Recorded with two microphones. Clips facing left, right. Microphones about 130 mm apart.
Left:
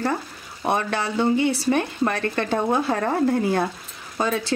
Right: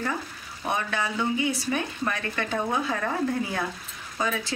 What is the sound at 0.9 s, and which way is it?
Speech, 35° left (ahead or behind).